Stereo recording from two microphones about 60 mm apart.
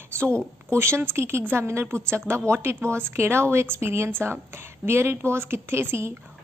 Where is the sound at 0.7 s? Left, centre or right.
Right.